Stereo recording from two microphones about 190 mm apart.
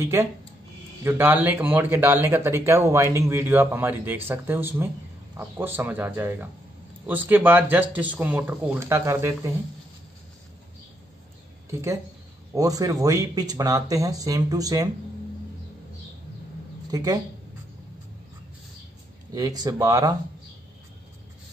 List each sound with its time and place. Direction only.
0.0 s speech: 15° right (ahead or behind)
11.7 s speech: 15° right (ahead or behind)
16.9 s speech: 20° right (ahead or behind)
19.3 s speech: 20° right (ahead or behind)